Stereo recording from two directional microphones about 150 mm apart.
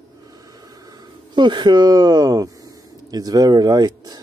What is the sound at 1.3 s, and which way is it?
Speech, 30° right (ahead or behind).